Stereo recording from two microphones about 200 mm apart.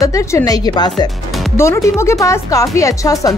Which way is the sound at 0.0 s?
15° left (ahead or behind).